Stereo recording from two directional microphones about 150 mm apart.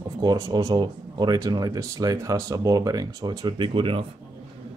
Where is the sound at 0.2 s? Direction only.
30° right (ahead or behind).